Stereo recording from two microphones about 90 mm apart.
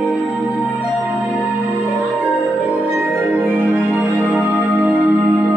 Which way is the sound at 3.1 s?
20° right (ahead or behind).